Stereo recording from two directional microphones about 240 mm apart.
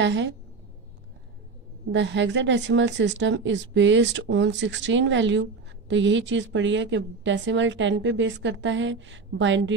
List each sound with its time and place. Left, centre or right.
0.0 s a woman's voice: right
1.9 s a woman's voice: right